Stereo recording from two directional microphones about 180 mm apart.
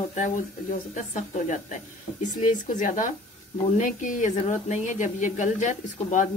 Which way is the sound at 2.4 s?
45° left (ahead or behind).